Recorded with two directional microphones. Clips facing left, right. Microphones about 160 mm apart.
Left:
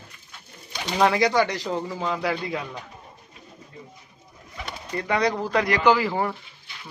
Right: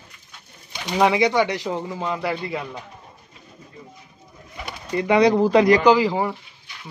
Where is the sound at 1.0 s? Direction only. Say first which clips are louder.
Right 2 dB; centre (ahead or behind).